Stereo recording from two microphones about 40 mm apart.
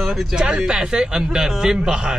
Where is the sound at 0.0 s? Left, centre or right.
Centre.